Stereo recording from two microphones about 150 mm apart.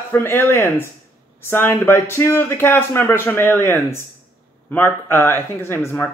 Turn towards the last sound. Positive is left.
turn(degrees=15)  # may be behind; listen again after turning